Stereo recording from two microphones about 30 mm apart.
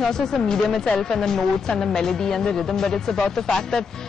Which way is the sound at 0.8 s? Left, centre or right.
Left.